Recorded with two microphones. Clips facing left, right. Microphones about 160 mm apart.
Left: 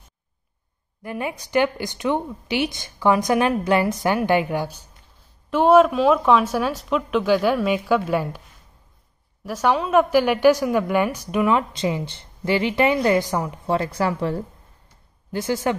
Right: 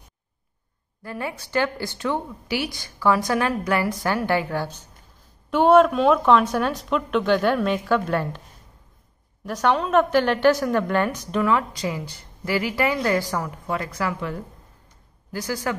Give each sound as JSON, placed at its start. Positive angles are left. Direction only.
{"t": 1.0, "sound": "a woman's voice", "side_deg": 15}
{"t": 5.5, "sound": "a woman's voice", "side_deg": 0}
{"t": 9.4, "sound": "a woman's voice", "side_deg": 5}